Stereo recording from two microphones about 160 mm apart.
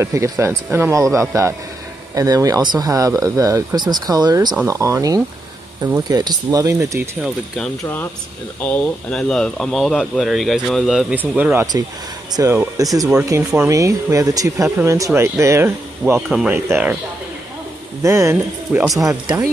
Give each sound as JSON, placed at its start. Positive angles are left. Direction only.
{"t": 0.0, "sound": "speech", "side_deg": -15}
{"t": 7.2, "sound": "speech", "side_deg": 0}
{"t": 16.2, "sound": "speech", "side_deg": -5}
{"t": 18.0, "sound": "speech", "side_deg": -20}